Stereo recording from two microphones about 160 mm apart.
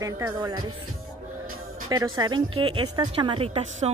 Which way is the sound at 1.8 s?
25° right (ahead or behind).